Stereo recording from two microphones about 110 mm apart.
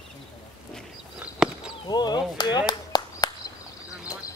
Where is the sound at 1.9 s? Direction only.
40° left (ahead or behind).